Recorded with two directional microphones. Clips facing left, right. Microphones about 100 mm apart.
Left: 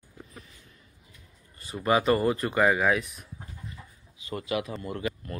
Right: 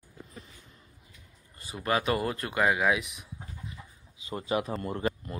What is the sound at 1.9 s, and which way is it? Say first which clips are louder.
Speech: left 5 dB; centre (ahead or behind).